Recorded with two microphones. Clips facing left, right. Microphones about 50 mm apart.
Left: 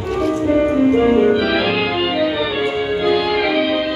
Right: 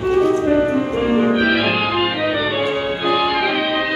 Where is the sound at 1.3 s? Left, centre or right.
Centre.